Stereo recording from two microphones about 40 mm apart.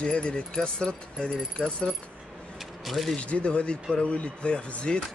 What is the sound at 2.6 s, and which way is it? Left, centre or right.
Speech, centre.